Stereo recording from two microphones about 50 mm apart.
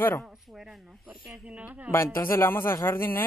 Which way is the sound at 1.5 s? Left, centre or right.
Right.